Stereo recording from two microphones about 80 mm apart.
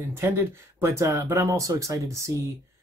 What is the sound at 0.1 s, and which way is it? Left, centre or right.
Speech, right.